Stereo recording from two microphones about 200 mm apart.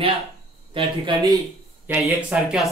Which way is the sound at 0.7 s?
25° right (ahead or behind).